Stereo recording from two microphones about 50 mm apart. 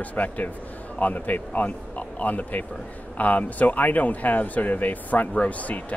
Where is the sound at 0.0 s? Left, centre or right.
Left.